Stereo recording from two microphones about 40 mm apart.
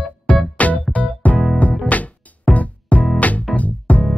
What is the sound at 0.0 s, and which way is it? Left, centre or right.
Music, left.